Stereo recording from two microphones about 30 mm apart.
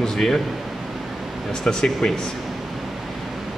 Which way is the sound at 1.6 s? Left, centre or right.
Left.